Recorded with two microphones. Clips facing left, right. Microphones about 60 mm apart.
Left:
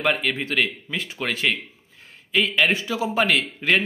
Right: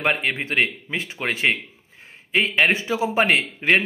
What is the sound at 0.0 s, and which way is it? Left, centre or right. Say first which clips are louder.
A man's voice: even; right.